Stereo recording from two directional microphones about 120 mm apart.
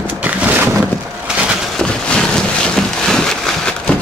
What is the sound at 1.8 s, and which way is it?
Boat, 5° left (ahead or behind).